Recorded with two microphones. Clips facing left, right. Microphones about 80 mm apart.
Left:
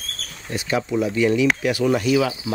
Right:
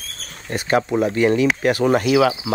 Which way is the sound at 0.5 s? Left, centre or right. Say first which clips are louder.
Right 4 dB; right.